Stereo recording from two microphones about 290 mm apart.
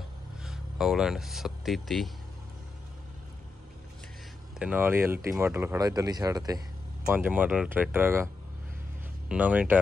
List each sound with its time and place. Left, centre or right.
0.4 s speech: centre
4.6 s speech: centre
9.3 s speech: centre